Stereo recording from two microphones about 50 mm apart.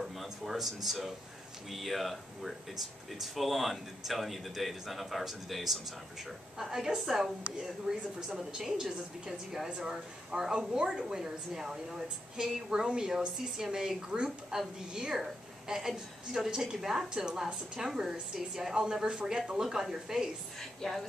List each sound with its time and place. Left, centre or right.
0.0 s a sound: centre
1.7 s speech: centre
7.9 s speech: centre
9.7 s speech: centre